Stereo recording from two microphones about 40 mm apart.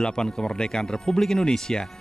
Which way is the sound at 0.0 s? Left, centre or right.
Centre.